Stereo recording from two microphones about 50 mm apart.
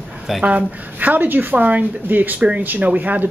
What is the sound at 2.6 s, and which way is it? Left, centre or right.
Speech, right.